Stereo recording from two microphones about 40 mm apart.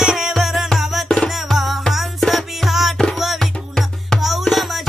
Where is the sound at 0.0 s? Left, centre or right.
Centre.